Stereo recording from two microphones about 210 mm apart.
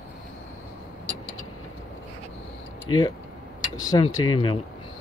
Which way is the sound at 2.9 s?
20° left (ahead or behind).